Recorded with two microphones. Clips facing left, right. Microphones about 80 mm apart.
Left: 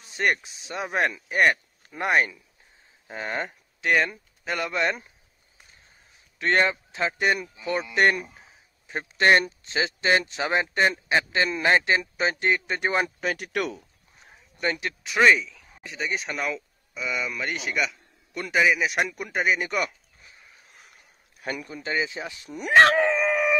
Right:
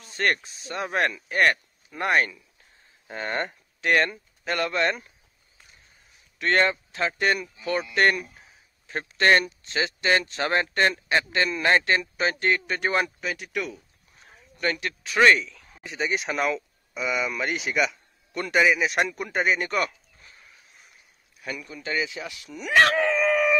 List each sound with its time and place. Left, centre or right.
0.1 s speech: centre
3.1 s speech: centre
6.3 s speech: centre
10.3 s speech: centre
13.2 s speech: left
13.5 s speech: left
13.7 s a sound: left
15.1 s speech: centre
21.4 s speech: left
21.7 s speech: left
22.7 s dog: left